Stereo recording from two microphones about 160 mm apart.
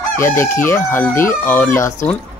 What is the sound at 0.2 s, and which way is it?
Speech, 15° left (ahead or behind).